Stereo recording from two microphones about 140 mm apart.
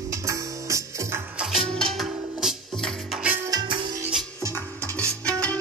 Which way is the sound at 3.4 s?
35° right (ahead or behind).